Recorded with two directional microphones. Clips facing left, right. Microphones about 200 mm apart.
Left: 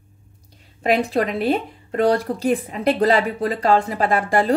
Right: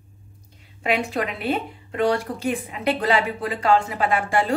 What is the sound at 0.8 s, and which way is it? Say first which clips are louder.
A woman's voice: left 5 dB; 35° left (ahead or behind).